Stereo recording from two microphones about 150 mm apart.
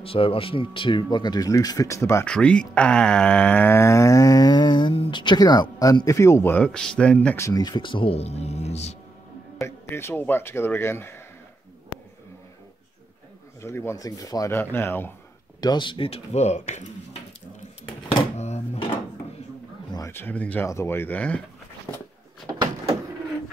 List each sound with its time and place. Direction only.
0.0 s speech: 40° left (ahead or behind); by 2.2 s 20° left (ahead or behind)
2.2 s speech: 5° left (ahead or behind)
7.3 s speech: 25° left (ahead or behind); by 8.9 s 45° left (ahead or behind)
9.6 s speech: 15° left (ahead or behind)
13.6 s speech: 15° left (ahead or behind)
15.6 s speech: 30° left (ahead or behind); by 17.2 s 50° left (ahead or behind)
18.3 s drawer open or close: 50° left (ahead or behind)
20.1 s speech: 15° left (ahead or behind)
21.9 s a sound: 35° left (ahead or behind)